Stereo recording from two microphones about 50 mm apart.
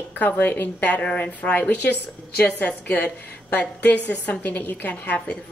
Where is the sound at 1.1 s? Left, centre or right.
Left.